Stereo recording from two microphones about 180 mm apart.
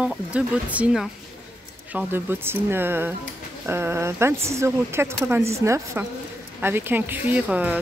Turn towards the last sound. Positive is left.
turn(degrees=-10)  # may be behind; listen again after turning